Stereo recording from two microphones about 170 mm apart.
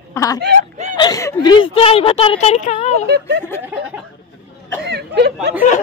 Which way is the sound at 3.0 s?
80° right.